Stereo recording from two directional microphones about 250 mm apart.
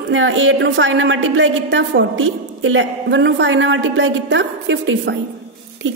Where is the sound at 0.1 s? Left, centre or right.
Right.